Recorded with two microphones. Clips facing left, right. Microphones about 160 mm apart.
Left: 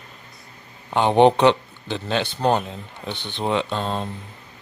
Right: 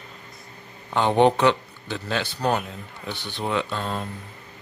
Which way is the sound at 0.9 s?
20° left (ahead or behind).